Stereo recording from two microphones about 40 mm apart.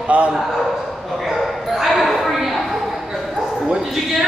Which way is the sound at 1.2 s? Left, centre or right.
Centre.